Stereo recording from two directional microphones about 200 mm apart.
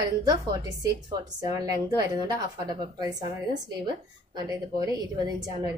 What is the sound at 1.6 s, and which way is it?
A woman's voice, 15° right (ahead or behind).